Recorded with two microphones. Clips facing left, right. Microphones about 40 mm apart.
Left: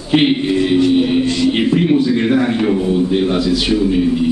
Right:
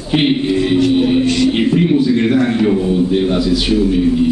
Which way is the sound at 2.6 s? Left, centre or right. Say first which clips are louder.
Right 1 dB; centre.